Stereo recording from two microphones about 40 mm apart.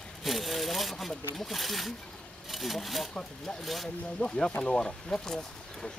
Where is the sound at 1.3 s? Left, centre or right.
Centre.